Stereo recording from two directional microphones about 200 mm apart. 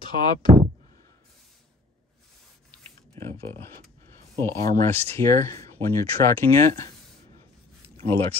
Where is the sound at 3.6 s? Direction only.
10° left (ahead or behind).